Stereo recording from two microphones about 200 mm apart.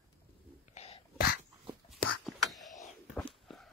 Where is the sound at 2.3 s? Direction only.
Centre (ahead or behind).